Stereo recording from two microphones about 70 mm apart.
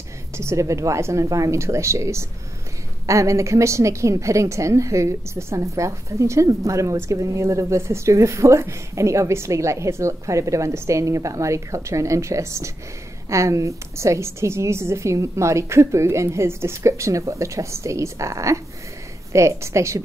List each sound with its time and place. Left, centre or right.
0.4 s a woman's voice: right